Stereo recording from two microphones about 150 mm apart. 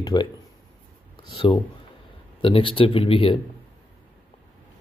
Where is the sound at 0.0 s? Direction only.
30° left (ahead or behind).